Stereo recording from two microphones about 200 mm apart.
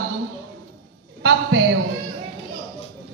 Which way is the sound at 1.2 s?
60° right (ahead or behind).